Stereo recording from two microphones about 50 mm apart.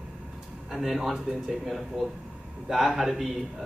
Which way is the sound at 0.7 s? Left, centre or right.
Centre.